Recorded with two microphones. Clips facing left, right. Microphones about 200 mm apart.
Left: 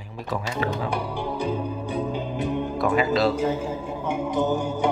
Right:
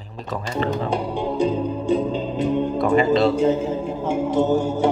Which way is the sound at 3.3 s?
25° right (ahead or behind).